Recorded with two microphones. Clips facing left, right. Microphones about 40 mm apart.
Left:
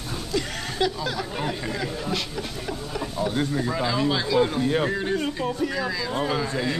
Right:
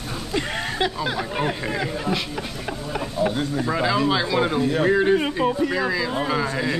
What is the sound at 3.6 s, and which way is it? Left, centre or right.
Speech, centre.